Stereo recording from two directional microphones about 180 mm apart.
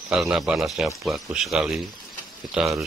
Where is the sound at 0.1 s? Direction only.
5° right (ahead or behind).